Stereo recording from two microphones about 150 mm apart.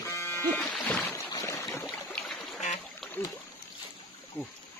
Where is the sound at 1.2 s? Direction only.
20° left (ahead or behind).